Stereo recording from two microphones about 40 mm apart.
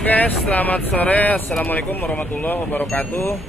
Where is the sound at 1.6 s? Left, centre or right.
Left.